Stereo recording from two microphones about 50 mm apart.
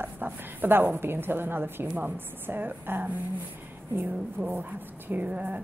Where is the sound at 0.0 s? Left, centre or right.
Right.